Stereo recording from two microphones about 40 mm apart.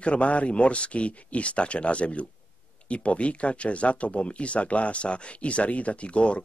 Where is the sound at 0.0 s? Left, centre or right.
Left.